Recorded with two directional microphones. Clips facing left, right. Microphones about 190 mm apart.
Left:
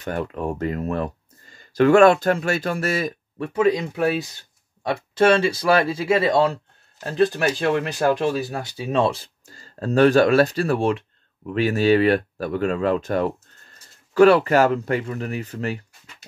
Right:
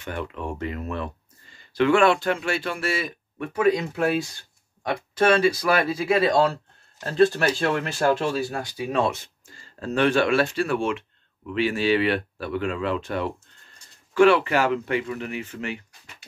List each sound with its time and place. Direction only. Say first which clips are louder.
0.0 s speech: left 5 dB; 40° left (ahead or behind)
3.5 s speech: left 2 dB; 20° left (ahead or behind); by 16.3 s 40° left (ahead or behind)